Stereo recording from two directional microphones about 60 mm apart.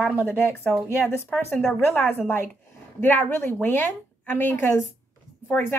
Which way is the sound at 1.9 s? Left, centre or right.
Left.